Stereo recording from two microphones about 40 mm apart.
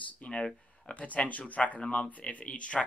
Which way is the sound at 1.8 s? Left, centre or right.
Left.